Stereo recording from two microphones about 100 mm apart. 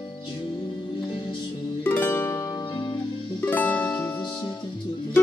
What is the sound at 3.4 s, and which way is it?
Music, 15° left (ahead or behind).